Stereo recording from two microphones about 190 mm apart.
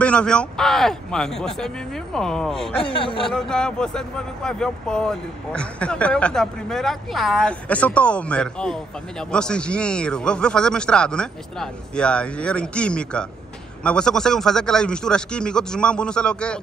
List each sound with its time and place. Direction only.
0.0 s speech: 5° left (ahead or behind)
2.8 s speech: 30° left (ahead or behind)
3.3 s speech: 5° left (ahead or behind)